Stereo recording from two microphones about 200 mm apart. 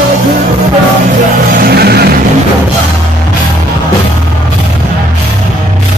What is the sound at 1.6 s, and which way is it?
Music, 50° right (ahead or behind).